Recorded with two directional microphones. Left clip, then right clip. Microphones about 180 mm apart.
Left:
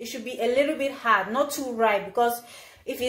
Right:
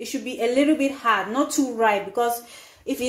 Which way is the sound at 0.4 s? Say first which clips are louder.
Right 3 dB; 30° right (ahead or behind).